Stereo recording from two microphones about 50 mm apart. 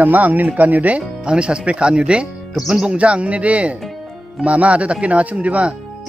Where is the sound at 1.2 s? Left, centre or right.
Centre.